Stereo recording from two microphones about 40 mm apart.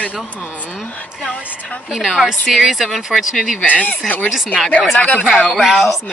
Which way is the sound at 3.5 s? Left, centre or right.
Left.